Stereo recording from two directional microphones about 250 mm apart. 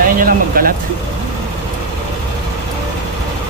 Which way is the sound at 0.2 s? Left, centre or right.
Right.